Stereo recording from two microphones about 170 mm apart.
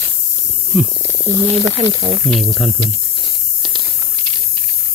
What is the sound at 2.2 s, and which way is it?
Speech, centre (ahead or behind).